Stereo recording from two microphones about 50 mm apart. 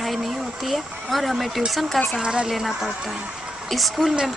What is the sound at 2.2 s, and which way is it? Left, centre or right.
Speech, centre.